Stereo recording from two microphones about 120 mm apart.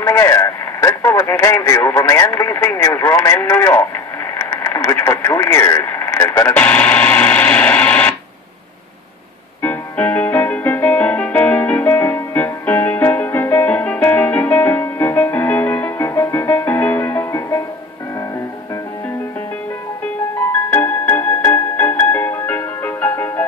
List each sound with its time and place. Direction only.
0.0 s radio: 20° left (ahead or behind)
1.5 s speech: 15° left (ahead or behind)
4.4 s radio: 20° left (ahead or behind)
9.6 s music: 15° left (ahead or behind)
20.7 s music: 15° left (ahead or behind)